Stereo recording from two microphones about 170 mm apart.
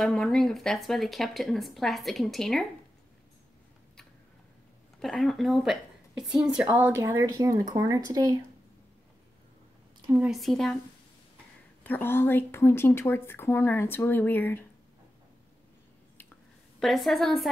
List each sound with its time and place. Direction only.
0.0 s speech: centre (ahead or behind)
5.0 s speech: centre (ahead or behind); by 8.4 s 20° right (ahead or behind)
10.1 s speech: 5° right (ahead or behind)
11.8 s a woman's voice: 10° left (ahead or behind)
16.8 s speech: centre (ahead or behind)